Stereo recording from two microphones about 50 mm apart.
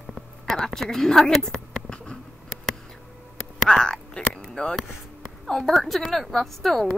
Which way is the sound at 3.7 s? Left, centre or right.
Centre.